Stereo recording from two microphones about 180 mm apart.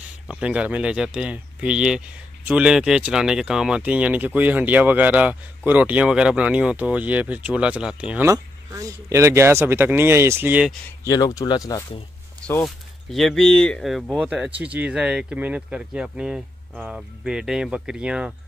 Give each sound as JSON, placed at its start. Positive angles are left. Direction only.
{"t": 0.3, "sound": "speech", "side_deg": -5}
{"t": 11.1, "sound": "speech", "side_deg": 20}
{"t": 12.4, "sound": "speech", "side_deg": 5}